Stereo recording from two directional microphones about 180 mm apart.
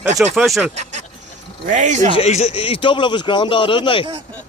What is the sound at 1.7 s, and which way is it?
Speech, 40° right (ahead or behind).